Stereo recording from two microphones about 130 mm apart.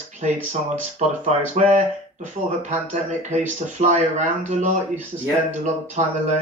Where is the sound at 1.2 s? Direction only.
65° right (ahead or behind).